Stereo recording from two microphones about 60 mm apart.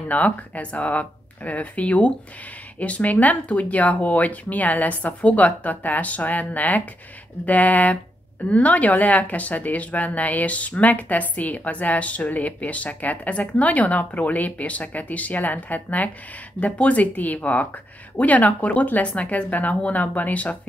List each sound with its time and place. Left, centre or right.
0.1 s speech: left